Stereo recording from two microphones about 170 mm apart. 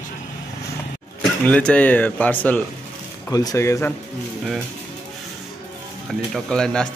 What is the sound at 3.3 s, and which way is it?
Speech, 20° left (ahead or behind).